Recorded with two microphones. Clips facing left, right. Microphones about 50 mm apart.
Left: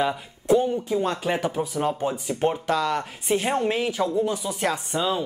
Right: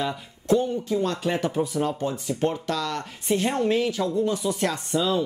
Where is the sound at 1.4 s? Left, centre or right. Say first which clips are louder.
Right 1 dB; centre.